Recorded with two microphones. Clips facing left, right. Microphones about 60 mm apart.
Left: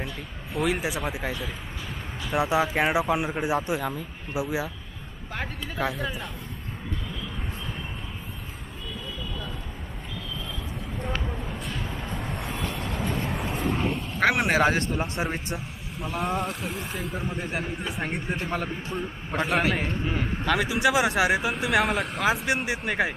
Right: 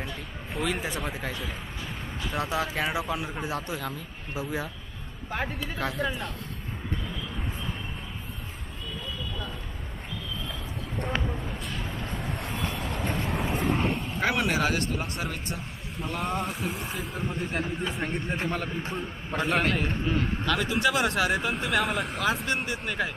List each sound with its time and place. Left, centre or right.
0.6 s a man's voice: centre
2.3 s a man's voice: centre
5.3 s speech: centre
5.8 s a man's voice: centre
11.2 s vehicle: centre
14.4 s speech: left
15.5 s speech: centre
19.4 s a man's voice: centre